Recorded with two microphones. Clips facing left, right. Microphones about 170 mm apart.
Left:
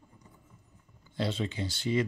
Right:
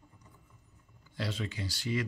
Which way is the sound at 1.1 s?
25° left (ahead or behind).